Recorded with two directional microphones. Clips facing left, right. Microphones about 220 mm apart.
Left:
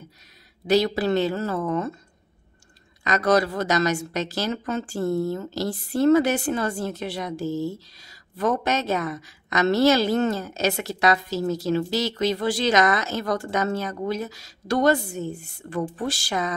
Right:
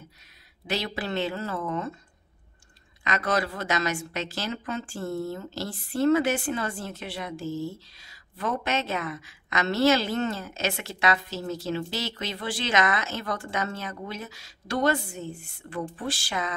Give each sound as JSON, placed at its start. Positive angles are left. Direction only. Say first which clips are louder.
{"t": 0.7, "sound": "a woman's voice", "louder": "left 10 dB", "side_deg": 40}
{"t": 3.0, "sound": "a woman's voice", "louder": "left 7 dB", "side_deg": 40}